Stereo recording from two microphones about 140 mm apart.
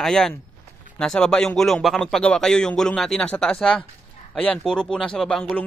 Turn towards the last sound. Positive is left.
turn(degrees=5)  # may be behind; listen again after turning